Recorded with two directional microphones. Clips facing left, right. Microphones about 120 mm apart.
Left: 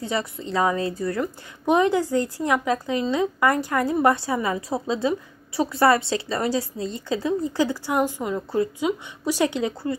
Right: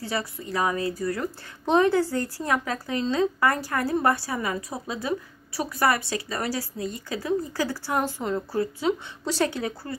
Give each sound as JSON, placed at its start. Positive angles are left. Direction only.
{"t": 0.0, "sound": "a woman's voice", "side_deg": 20}